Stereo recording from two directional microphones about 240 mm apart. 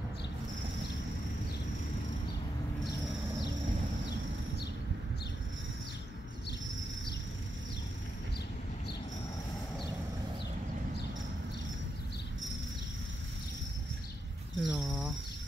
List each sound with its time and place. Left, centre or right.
14.6 s purr: centre